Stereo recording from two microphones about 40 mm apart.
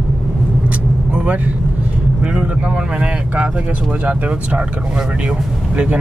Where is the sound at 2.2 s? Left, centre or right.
Right.